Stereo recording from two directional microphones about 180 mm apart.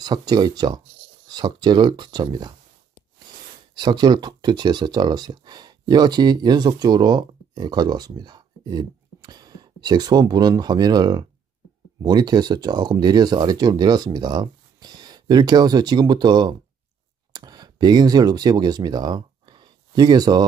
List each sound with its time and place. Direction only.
0.0 s speech: 20° right (ahead or behind)
3.7 s speech: 25° right (ahead or behind)